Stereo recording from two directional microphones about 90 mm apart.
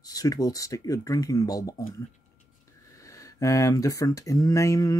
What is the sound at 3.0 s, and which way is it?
Speech, 35° left (ahead or behind).